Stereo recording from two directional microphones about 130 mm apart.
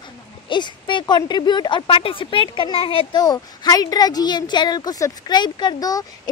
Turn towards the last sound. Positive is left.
turn(degrees=30)  # may be behind; listen again after turning